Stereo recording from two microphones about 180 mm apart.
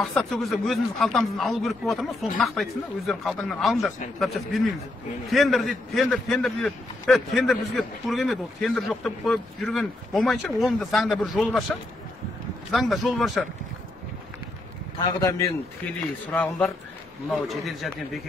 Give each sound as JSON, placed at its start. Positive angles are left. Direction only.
{"t": 0.0, "sound": "a man's voice", "side_deg": 0}
{"t": 12.7, "sound": "a man's voice", "side_deg": 0}
{"t": 15.0, "sound": "a man's voice", "side_deg": 20}
{"t": 16.3, "sound": "a man's voice", "side_deg": 5}